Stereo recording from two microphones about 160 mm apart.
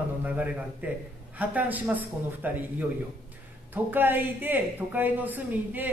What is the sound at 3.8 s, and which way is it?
Speech, 10° right (ahead or behind).